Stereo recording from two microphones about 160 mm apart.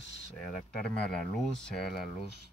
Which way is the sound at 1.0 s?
5° left (ahead or behind).